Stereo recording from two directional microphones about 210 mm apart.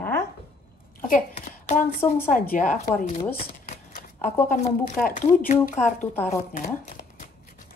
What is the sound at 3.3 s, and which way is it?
Shuffling cards, 40° left (ahead or behind).